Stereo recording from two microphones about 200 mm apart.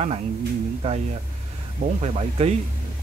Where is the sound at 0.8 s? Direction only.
30° right (ahead or behind).